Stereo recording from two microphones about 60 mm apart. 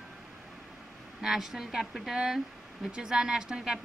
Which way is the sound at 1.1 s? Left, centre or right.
Centre.